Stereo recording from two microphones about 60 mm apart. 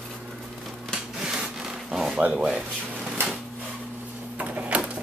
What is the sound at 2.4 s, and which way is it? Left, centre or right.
Speech, centre.